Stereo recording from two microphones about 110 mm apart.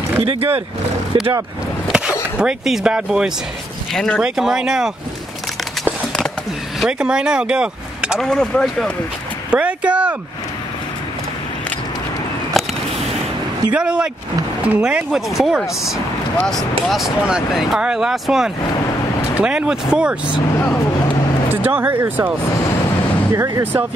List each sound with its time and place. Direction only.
0.2 s speech: 60° right (ahead or behind)
1.1 s speech: 45° right (ahead or behind)
1.9 s skateboard: 10° right (ahead or behind)
2.3 s speech: 5° right (ahead or behind)
3.9 s speech: 5° left (ahead or behind)
4.2 s speech: 5° right (ahead or behind)
6.8 s speech: 5° right (ahead or behind)
8.2 s speech: 5° left (ahead or behind)
9.5 s speech: 10° right (ahead or behind)
13.7 s speech: 10° right (ahead or behind)
17.2 s speech: 5° right (ahead or behind)
21.5 s speech: 15° right (ahead or behind)
23.3 s speech: 25° right (ahead or behind)